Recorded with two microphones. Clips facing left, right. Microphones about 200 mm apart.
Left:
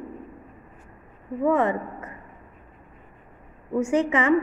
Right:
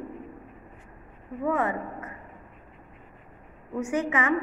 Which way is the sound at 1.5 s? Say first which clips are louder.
Left 5 dB; 30° left (ahead or behind).